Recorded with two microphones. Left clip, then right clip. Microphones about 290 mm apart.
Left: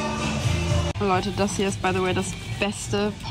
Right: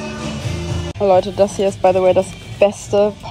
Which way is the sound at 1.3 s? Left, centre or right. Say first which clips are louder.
Right 10 dB; left.